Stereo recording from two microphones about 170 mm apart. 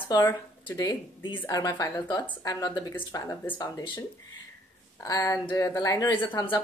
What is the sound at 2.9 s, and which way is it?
Speech, 10° left (ahead or behind).